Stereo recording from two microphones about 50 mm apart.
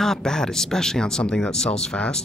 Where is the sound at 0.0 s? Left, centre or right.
Centre.